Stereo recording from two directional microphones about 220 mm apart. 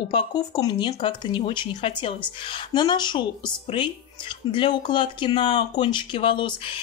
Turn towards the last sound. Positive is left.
turn(degrees=20)  # may be behind; listen again after turning